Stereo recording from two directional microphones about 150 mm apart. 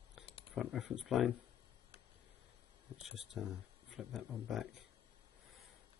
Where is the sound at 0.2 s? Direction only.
35° left (ahead or behind).